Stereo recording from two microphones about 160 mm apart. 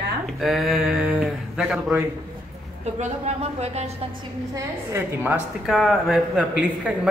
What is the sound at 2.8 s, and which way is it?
A woman's voice, 45° right (ahead or behind).